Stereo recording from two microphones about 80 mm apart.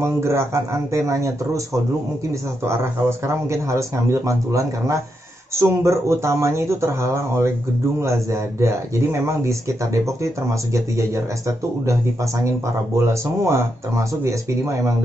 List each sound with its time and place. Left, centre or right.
0.0 s speech: right